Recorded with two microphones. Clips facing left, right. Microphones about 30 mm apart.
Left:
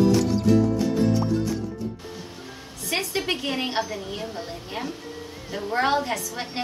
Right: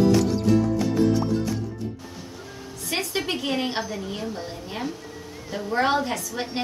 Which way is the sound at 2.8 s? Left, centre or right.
Centre.